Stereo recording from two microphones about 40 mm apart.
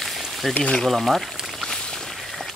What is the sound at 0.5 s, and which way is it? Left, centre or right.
Speech, left.